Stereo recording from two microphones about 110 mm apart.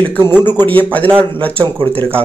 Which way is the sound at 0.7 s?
15° left (ahead or behind).